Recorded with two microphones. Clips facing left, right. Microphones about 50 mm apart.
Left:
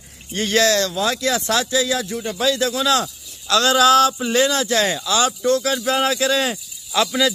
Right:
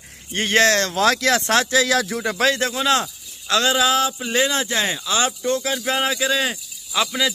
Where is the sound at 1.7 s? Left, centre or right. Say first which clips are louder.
Right 2 dB; right.